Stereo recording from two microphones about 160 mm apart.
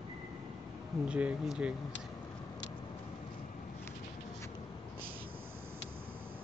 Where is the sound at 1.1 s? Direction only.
5° right (ahead or behind).